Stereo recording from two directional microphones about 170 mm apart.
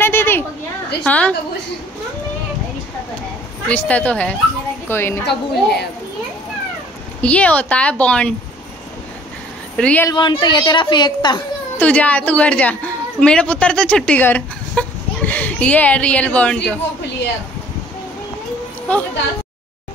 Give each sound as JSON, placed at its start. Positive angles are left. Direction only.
{"t": 0.0, "sound": "a sound", "side_deg": 15}
{"t": 1.0, "sound": "a woman's voice", "side_deg": 10}
{"t": 3.6, "sound": "a woman's voice", "side_deg": 10}
{"t": 5.2, "sound": "a woman's voice", "side_deg": 75}
{"t": 7.2, "sound": "a woman's voice", "side_deg": 10}
{"t": 9.8, "sound": "a woman's voice", "side_deg": 5}
{"t": 10.0, "sound": "a woman's voice", "side_deg": 25}
{"t": 11.8, "sound": "a woman's voice", "side_deg": 10}
{"t": 18.9, "sound": "a woman's voice", "side_deg": 10}